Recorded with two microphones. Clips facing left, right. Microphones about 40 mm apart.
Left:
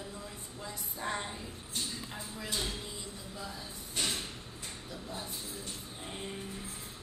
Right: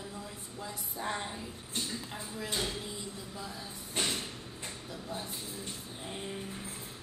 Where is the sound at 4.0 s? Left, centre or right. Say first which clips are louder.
Right 2 dB; right.